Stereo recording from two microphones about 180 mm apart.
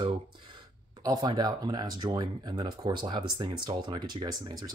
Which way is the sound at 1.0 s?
20° right (ahead or behind).